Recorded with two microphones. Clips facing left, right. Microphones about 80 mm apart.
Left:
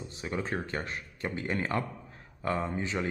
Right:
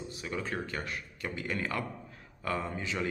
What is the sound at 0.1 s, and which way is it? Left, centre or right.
A man's voice, left.